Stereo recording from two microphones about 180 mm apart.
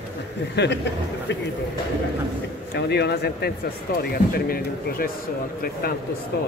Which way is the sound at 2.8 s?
65° left (ahead or behind).